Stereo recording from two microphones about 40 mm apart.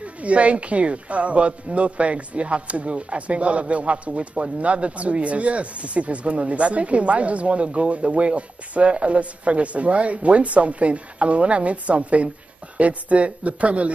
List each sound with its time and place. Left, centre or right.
0.2 s speech: right